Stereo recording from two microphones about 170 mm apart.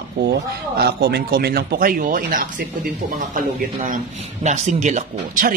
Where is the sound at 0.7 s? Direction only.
65° right (ahead or behind).